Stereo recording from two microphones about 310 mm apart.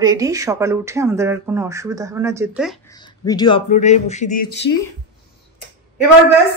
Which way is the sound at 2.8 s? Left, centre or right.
Centre.